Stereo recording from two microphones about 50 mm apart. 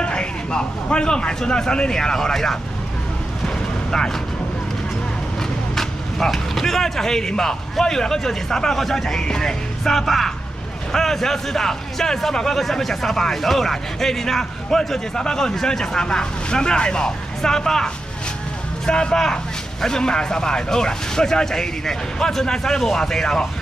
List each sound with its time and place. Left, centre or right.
0.0 s a man's voice: centre
3.4 s vehicle: centre
5.8 s a man's voice: centre